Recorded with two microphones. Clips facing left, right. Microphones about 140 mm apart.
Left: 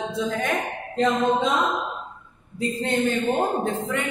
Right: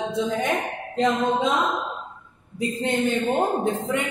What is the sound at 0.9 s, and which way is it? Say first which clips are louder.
Speech: left 1 dB; 15° right (ahead or behind).